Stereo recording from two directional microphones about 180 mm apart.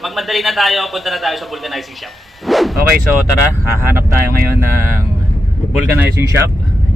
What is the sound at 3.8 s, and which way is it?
Speech, 15° right (ahead or behind).